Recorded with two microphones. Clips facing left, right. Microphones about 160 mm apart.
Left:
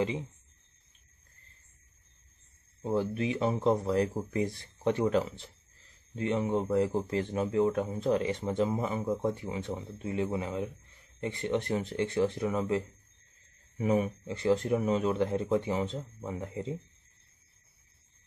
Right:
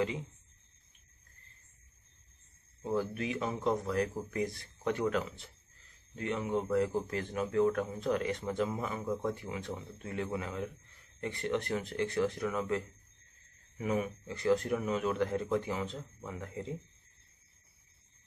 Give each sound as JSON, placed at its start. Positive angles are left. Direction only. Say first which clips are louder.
{"t": 2.8, "sound": "a man's voice", "louder": "left 4 dB", "side_deg": 25}